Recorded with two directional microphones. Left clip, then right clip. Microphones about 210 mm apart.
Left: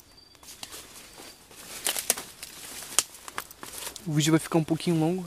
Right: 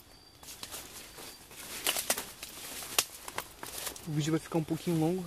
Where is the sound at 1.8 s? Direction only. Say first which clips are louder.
Left 2 dB; 40° left (ahead or behind).